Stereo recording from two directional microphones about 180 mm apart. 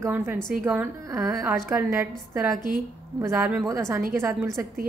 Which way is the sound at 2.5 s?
50° right (ahead or behind).